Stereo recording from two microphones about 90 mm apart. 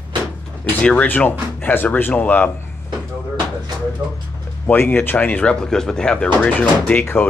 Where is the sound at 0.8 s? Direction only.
15° left (ahead or behind).